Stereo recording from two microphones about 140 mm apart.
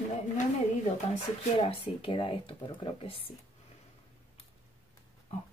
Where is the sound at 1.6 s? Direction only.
40° left (ahead or behind).